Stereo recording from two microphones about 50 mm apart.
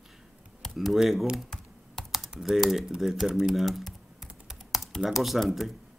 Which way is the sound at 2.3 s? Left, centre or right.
Centre.